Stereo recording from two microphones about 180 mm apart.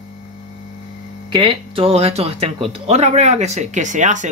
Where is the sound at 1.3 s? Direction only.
25° right (ahead or behind).